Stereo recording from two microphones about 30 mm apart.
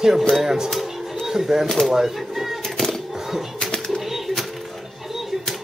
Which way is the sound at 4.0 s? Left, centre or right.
Centre.